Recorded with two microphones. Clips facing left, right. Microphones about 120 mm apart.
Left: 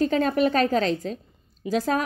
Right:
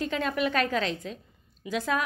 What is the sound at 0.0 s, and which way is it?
A woman's voice, 40° left (ahead or behind).